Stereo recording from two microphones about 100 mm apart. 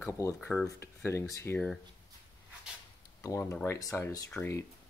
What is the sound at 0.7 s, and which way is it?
Speech, 25° left (ahead or behind).